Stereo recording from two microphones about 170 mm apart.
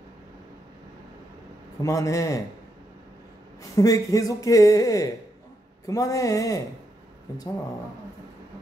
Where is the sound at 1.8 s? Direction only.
20° left (ahead or behind).